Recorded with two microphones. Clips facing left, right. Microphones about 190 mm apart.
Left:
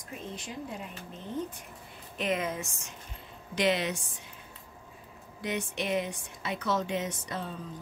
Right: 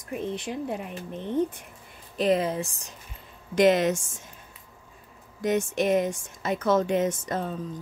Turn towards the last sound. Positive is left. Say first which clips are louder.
# right 7 dB
turn(degrees=-45)  # may be behind; listen again after turning